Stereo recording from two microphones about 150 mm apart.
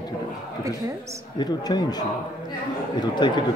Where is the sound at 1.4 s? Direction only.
25° left (ahead or behind).